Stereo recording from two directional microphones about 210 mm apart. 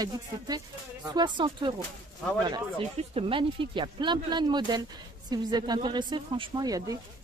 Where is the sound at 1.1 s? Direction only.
20° right (ahead or behind).